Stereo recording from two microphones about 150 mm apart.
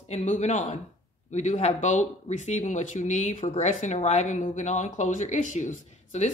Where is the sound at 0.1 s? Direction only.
50° left (ahead or behind).